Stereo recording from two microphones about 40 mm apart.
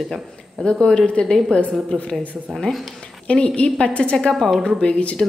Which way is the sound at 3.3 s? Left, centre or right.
Left.